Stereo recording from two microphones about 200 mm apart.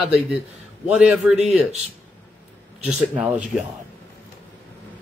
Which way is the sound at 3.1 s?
5° right (ahead or behind).